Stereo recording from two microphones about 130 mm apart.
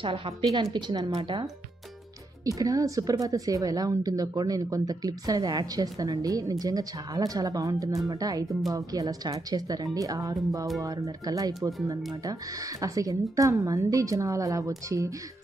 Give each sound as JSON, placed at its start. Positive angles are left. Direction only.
{"t": 0.0, "sound": "a woman's voice", "side_deg": -40}